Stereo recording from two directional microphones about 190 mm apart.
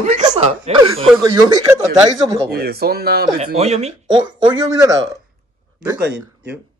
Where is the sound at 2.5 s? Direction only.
55° right (ahead or behind).